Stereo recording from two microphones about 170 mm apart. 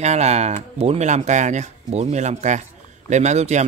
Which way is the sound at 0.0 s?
40° right (ahead or behind).